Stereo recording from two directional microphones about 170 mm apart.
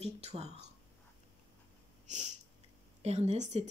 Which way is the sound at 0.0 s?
35° right (ahead or behind).